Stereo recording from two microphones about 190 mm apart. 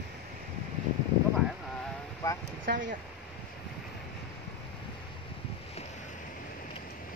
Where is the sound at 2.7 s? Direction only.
60° right (ahead or behind).